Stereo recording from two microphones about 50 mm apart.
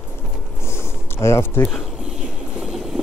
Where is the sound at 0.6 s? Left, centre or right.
Left.